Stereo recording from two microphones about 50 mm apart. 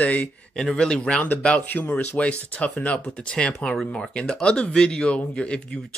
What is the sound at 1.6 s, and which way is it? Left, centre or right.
Speech, left.